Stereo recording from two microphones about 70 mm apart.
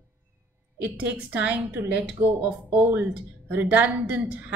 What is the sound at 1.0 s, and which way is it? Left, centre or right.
A woman's voice, right.